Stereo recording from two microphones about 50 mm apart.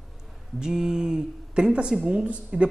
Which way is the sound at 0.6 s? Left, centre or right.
Centre.